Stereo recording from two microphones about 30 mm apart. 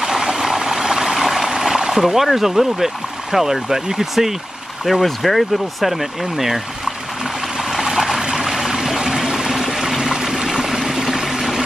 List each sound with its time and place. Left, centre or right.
0.0 s stream: centre
1.5 s a sound: right
2.3 s speech: centre
5.0 s speech: centre
8.2 s a sound: right
8.5 s water: centre